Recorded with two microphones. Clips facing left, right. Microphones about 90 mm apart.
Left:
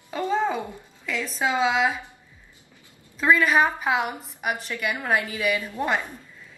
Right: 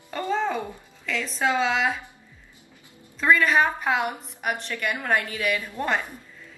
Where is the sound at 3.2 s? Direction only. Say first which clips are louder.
Even; 5° left (ahead or behind).